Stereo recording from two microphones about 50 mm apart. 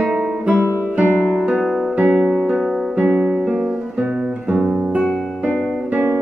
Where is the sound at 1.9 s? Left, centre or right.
Right.